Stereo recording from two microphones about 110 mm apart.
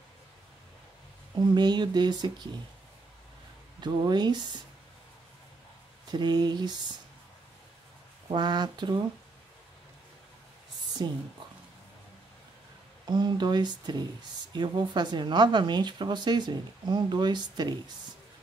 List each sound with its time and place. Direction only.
1.4 s speech: 40° right (ahead or behind)
3.8 s speech: 40° right (ahead or behind)
6.0 s speech: 40° right (ahead or behind)
8.3 s speech: 40° right (ahead or behind)
11.0 s speech: 40° right (ahead or behind)
13.0 s speech: 40° right (ahead or behind)